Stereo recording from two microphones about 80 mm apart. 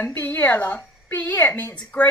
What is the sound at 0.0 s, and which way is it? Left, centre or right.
A woman's voice, left.